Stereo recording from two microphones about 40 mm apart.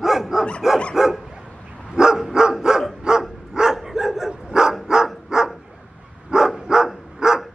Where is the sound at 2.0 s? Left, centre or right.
Centre.